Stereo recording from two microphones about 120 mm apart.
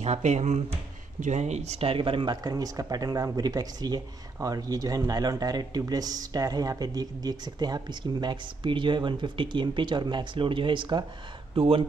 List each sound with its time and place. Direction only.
0.0 s speech: 70° right (ahead or behind); by 11.8 s 50° right (ahead or behind)